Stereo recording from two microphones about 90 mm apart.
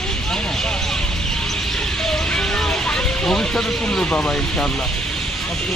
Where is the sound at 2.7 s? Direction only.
5° left (ahead or behind).